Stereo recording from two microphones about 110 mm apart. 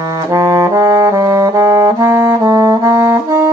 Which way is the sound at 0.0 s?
30° right (ahead or behind).